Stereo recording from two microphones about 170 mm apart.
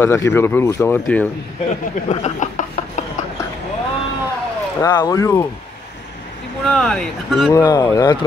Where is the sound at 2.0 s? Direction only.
45° left (ahead or behind).